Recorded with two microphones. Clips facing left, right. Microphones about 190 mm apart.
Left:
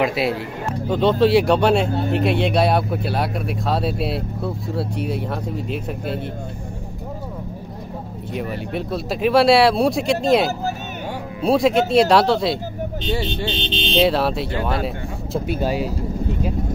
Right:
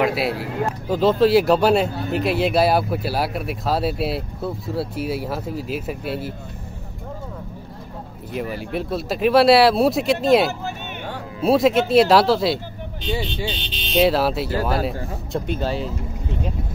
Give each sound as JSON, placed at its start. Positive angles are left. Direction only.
{"t": 0.0, "sound": "speech", "side_deg": 0}
{"t": 8.3, "sound": "speech", "side_deg": 0}
{"t": 13.6, "sound": "speech", "side_deg": 25}
{"t": 13.9, "sound": "speech", "side_deg": 0}
{"t": 15.3, "sound": "speech", "side_deg": 5}